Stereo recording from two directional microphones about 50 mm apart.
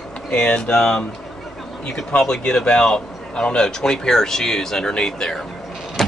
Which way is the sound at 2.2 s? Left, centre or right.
Centre.